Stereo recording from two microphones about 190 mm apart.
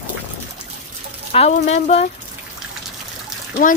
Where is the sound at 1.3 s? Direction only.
35° left (ahead or behind).